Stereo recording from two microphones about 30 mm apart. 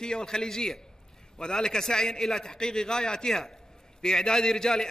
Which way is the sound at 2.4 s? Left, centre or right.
Left.